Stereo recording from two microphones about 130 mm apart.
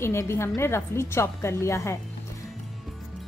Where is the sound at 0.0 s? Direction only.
20° left (ahead or behind).